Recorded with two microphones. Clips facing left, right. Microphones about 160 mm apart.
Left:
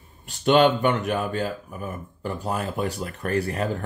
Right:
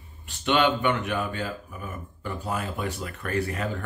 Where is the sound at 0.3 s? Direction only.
40° left (ahead or behind).